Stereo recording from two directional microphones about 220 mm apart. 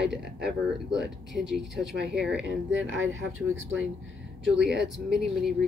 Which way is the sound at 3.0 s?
65° right (ahead or behind).